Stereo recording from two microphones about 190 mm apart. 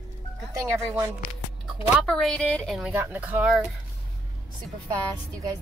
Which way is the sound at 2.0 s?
5° left (ahead or behind).